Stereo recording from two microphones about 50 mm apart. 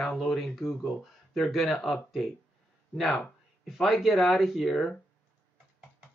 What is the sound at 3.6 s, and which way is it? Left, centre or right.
Speech, centre.